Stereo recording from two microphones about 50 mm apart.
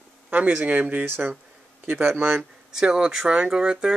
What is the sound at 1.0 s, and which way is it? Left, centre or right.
Speech, right.